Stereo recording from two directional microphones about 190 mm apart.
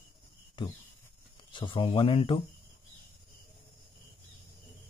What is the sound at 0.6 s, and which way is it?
Speech, 25° left (ahead or behind).